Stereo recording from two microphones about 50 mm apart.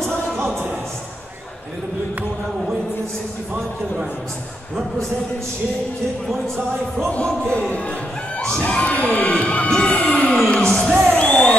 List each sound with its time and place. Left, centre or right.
7.1 s children shouting: left
8.4 s children shouting: centre
9.7 s music: left
10.5 s music: centre
10.9 s music: centre
11.1 s music: left